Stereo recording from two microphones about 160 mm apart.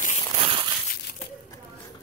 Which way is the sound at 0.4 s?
35° right (ahead or behind).